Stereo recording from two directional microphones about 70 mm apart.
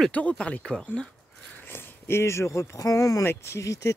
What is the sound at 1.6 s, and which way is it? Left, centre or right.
Speech, left.